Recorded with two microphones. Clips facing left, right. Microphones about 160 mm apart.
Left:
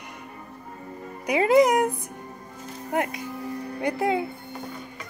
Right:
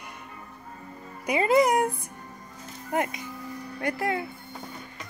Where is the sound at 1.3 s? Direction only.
15° left (ahead or behind).